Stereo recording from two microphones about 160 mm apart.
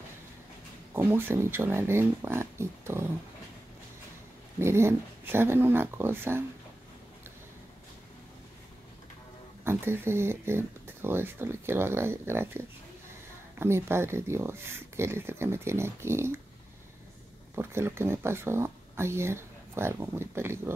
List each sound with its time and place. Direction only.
0.9 s speech: 15° right (ahead or behind)
4.6 s speech: 15° right (ahead or behind)
9.7 s speech: 15° right (ahead or behind)
17.6 s speech: 15° right (ahead or behind)